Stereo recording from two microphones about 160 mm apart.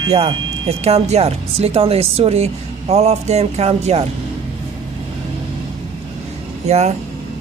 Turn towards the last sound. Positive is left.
turn(degrees=-45)  # may be behind; listen again after turning